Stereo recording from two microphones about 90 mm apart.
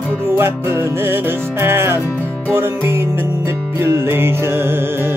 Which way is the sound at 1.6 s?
25° right (ahead or behind).